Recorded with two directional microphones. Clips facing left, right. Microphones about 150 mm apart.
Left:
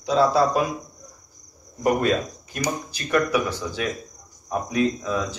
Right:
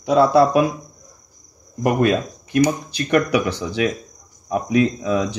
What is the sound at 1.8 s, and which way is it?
Speech, 70° right (ahead or behind).